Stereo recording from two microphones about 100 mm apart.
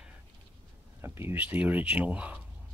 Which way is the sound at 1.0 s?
25° right (ahead or behind).